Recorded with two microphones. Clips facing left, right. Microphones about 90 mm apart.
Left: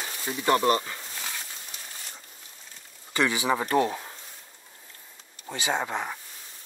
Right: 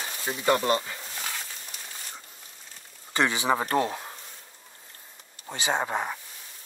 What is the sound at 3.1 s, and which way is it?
Speech, 30° right (ahead or behind).